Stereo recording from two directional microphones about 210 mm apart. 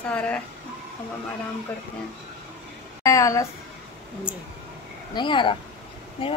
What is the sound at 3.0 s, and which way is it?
Speech, 15° left (ahead or behind).